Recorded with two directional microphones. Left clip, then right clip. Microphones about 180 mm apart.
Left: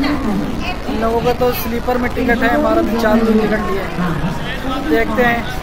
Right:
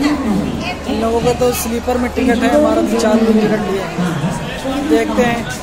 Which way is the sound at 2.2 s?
5° right (ahead or behind).